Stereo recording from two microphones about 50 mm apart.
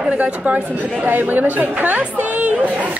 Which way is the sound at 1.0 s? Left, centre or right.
Right.